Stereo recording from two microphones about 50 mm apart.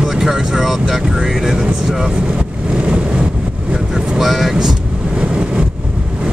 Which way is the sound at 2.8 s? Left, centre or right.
Right.